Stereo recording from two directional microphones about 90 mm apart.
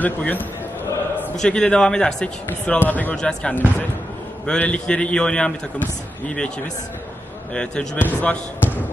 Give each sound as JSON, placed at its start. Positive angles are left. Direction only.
{"t": 0.0, "sound": "a man's voice", "side_deg": 20}
{"t": 1.4, "sound": "speech", "side_deg": 10}
{"t": 7.5, "sound": "speech", "side_deg": 10}